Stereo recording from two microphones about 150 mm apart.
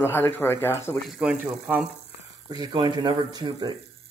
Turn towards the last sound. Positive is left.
turn(degrees=-30)  # may be behind; listen again after turning